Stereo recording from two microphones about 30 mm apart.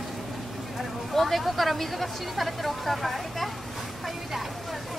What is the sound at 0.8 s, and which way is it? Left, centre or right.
Speech, centre.